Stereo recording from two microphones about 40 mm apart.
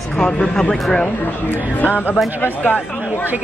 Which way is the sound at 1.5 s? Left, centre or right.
Left.